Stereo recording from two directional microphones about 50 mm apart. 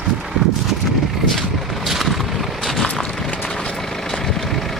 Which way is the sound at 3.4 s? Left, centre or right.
Centre.